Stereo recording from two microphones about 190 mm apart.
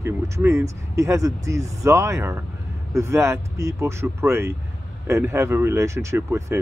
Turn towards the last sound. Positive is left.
turn(degrees=-15)  # may be behind; listen again after turning